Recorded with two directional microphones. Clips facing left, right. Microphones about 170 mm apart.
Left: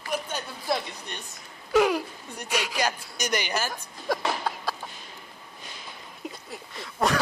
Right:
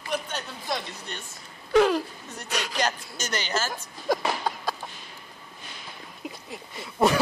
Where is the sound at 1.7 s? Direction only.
10° left (ahead or behind).